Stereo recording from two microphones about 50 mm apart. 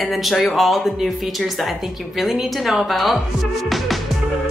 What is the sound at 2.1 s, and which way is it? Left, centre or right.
A woman's voice, centre.